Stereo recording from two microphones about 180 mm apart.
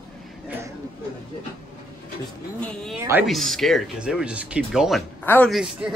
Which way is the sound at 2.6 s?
Centre (ahead or behind).